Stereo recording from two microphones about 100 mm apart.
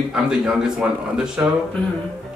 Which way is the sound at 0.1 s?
5° right (ahead or behind).